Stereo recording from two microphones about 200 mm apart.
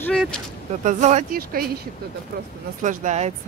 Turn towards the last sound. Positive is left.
turn(degrees=-35)  # may be behind; listen again after turning